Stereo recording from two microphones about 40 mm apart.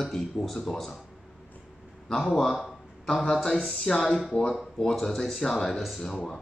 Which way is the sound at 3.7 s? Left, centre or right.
Centre.